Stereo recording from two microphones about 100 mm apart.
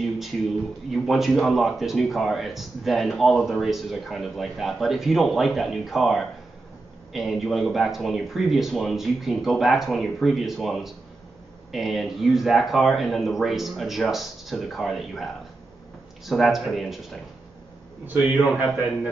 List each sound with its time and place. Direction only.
0.9 s speech: centre (ahead or behind)
16.3 s speech: centre (ahead or behind)
18.0 s a man's voice: 15° right (ahead or behind)